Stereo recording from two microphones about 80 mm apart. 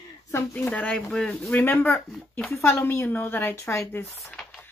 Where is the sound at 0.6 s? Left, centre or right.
Centre.